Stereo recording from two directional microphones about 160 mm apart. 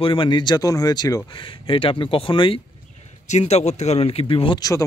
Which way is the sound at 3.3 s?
45° left (ahead or behind).